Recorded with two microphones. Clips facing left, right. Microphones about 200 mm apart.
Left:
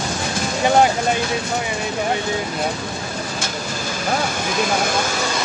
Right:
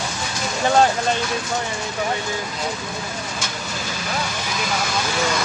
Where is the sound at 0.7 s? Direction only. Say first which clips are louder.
Left 1 dB; 15° left (ahead or behind).